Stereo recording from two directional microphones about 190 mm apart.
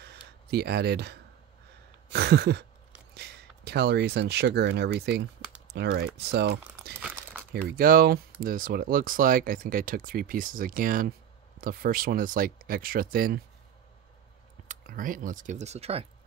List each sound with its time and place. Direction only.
0.0 s a sound: 60° right (ahead or behind)
3.2 s speech: 60° right (ahead or behind)
6.1 s a sound: 60° right (ahead or behind)
6.8 s dog: 60° right (ahead or behind)
7.7 s speech: 50° right (ahead or behind)
14.7 s speech: 45° right (ahead or behind)